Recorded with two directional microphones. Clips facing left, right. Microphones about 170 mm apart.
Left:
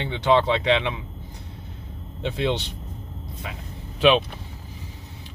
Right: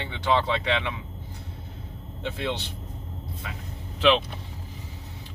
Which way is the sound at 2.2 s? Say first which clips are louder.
Left 5 dB; 20° left (ahead or behind).